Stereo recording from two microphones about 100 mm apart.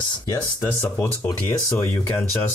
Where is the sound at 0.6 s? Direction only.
25° left (ahead or behind).